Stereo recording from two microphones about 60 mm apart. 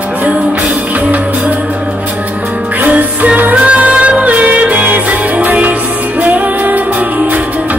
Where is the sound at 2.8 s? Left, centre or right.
Right.